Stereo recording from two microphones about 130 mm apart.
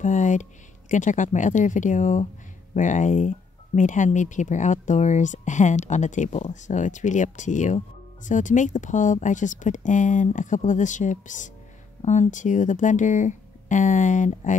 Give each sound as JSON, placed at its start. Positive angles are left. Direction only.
{"t": 0.0, "sound": "speech", "side_deg": 70}
{"t": 12.0, "sound": "speech", "side_deg": 60}